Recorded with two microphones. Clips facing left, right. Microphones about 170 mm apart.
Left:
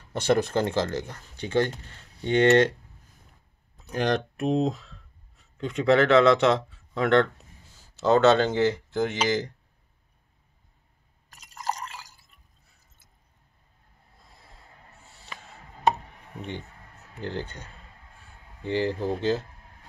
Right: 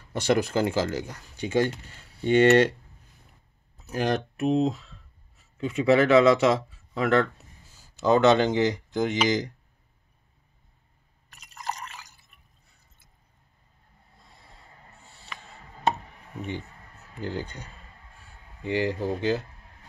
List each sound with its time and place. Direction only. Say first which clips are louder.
0.1 s speech: left 1 dB; 10° right (ahead or behind)
3.7 s speech: left 1 dB; 5° right (ahead or behind)
11.4 s drip: left 3 dB; 40° left (ahead or behind)
16.3 s speech: right 2 dB; 10° right (ahead or behind)